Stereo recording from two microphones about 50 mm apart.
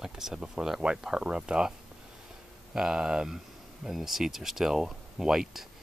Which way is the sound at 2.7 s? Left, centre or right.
Centre.